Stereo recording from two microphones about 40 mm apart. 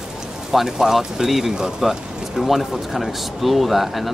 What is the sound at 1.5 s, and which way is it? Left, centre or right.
Speech, centre.